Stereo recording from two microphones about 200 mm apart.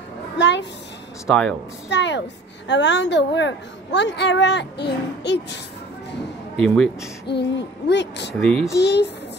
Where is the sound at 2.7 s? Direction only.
60° left (ahead or behind).